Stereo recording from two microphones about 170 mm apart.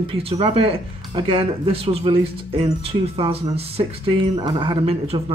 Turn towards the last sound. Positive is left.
turn(degrees=-35)  # may be behind; listen again after turning